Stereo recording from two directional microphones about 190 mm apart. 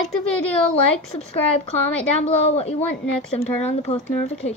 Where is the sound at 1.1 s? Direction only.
35° left (ahead or behind).